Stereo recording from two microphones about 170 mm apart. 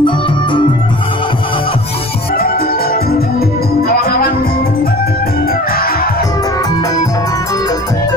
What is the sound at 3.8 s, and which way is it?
Music, 60° left (ahead or behind).